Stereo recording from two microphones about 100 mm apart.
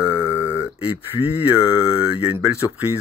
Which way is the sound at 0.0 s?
15° right (ahead or behind).